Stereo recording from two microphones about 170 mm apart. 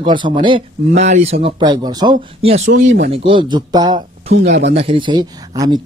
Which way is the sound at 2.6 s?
90° right.